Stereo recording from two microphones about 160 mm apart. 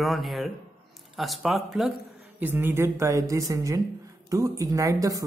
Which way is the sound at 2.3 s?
10° right (ahead or behind).